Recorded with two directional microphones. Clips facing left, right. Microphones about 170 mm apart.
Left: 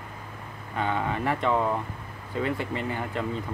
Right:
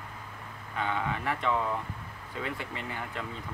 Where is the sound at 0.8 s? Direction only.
40° left (ahead or behind).